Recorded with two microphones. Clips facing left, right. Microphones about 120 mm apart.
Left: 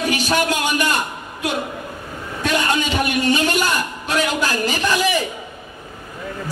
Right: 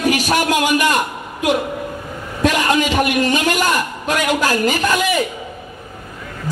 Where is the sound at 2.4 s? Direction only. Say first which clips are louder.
Right 4 dB; 35° right (ahead or behind).